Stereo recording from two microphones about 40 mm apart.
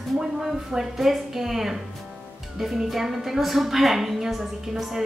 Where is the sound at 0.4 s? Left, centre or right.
Centre.